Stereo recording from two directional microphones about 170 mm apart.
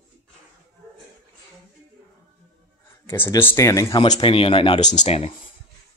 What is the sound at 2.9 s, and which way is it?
Speech, 15° left (ahead or behind).